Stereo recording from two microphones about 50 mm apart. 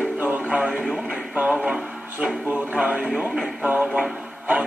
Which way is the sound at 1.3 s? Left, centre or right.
Right.